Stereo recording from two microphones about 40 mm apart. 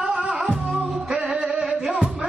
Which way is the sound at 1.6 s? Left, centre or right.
Centre.